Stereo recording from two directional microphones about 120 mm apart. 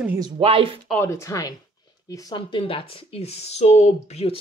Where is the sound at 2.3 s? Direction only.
40° left (ahead or behind); by 4.4 s 60° left (ahead or behind).